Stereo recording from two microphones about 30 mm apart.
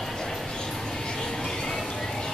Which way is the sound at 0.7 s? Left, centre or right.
Centre.